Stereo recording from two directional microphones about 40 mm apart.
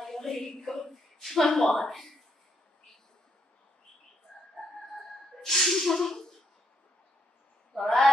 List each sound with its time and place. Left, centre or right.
0.0 s speech: centre
4.9 s music: centre
7.7 s speech: centre